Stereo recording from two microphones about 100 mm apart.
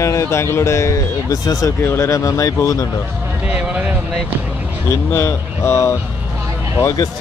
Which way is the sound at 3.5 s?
10° right (ahead or behind).